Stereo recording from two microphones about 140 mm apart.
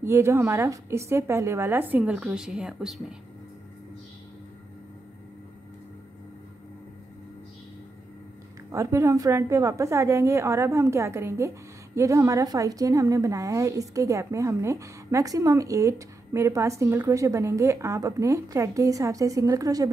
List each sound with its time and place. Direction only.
0.0 s a woman's voice: 20° right (ahead or behind)
8.7 s a woman's voice: 20° right (ahead or behind)